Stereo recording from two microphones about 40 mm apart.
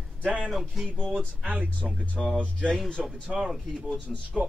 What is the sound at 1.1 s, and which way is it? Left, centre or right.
Speech, right.